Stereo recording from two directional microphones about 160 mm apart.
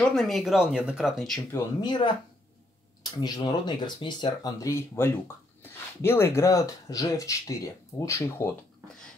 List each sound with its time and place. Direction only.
0.1 s speech: centre (ahead or behind)
1.5 s speech: 25° left (ahead or behind)